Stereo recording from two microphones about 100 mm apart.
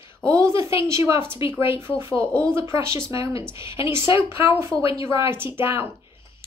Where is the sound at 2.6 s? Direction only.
30° right (ahead or behind).